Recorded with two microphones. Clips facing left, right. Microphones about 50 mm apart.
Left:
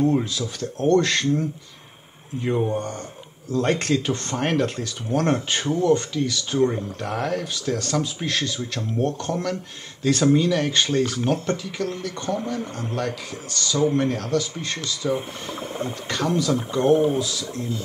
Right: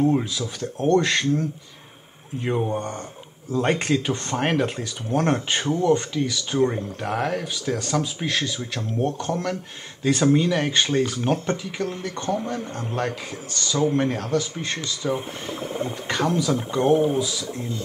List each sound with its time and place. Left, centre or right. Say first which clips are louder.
0.1 s speech: even; centre
2.4 s speech: left 1 dB; centre
15.1 s speech: even; centre
15.9 s speech: right 3 dB; centre
16.5 s speech: left 1 dB; centre